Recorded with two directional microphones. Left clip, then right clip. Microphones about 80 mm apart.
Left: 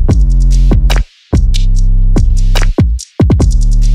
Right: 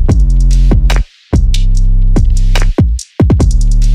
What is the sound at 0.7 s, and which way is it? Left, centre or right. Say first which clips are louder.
Music: even; right.